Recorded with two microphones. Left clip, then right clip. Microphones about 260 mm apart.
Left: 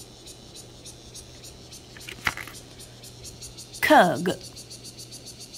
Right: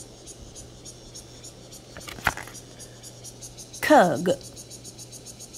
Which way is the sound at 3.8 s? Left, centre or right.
Centre.